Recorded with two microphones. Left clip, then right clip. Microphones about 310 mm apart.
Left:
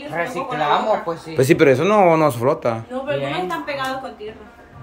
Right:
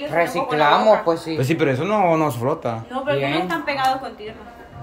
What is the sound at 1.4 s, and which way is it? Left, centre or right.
Speech, centre.